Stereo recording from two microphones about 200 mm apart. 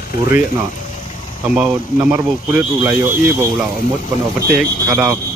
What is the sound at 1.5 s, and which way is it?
Speech, 10° right (ahead or behind).